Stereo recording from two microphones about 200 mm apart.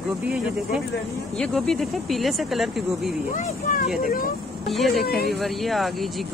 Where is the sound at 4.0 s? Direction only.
45° left (ahead or behind).